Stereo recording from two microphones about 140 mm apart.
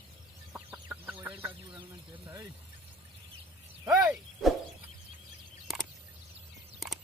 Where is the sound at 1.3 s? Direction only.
40° right (ahead or behind).